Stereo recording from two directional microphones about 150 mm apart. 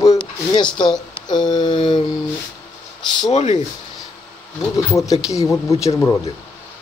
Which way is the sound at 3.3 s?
45° left (ahead or behind).